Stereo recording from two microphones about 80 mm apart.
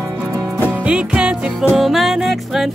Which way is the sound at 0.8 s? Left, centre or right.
Centre.